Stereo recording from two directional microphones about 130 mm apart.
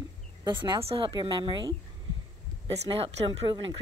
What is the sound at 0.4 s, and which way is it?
Speech, 35° right (ahead or behind).